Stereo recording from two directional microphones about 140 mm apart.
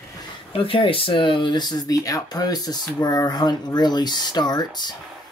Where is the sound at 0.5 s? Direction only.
40° left (ahead or behind).